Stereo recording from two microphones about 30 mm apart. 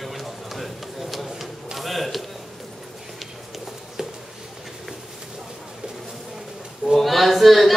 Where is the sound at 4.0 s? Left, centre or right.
Centre.